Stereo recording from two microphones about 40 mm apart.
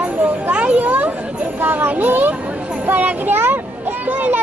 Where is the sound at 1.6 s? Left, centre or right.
Right.